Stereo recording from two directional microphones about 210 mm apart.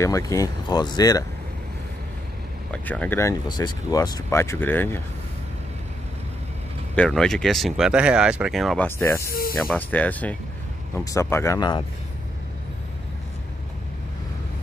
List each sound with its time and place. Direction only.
0.0 s speech: 15° left (ahead or behind)
2.7 s speech: 5° left (ahead or behind)
7.0 s speech: 5° left (ahead or behind)
9.3 s speech: 45° left (ahead or behind)
9.6 s speech: 5° left (ahead or behind)